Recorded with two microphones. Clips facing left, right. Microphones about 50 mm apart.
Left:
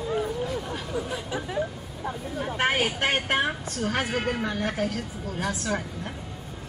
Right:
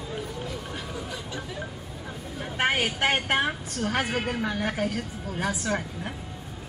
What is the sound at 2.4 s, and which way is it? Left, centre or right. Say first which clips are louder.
Vehicle: left 1 dB; centre.